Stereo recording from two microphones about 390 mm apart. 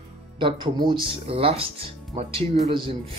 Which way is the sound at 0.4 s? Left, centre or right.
Centre.